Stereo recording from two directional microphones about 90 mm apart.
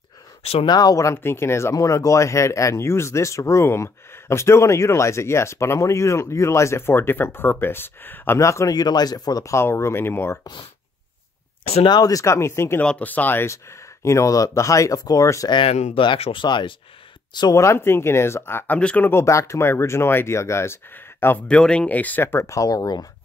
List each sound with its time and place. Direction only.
0.7 s speech: 45° left (ahead or behind); by 8.4 s 25° left (ahead or behind)
8.4 s speech: 35° left (ahead or behind)
8.7 s speech: 50° left (ahead or behind); by 10.4 s 25° left (ahead or behind)
11.9 s speech: 45° left (ahead or behind)
12.8 s speech: 15° left (ahead or behind); by 15.5 s 40° left (ahead or behind)
15.5 s speech: 80° left; by 17.6 s 55° left (ahead or behind)
17.6 s speech: 30° left (ahead or behind)
21.5 s speech: 10° left (ahead or behind); by 22.6 s 25° left (ahead or behind)
22.6 s speech: 45° left (ahead or behind)